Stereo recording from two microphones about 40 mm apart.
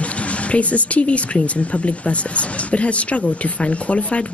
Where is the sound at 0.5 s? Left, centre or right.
Left.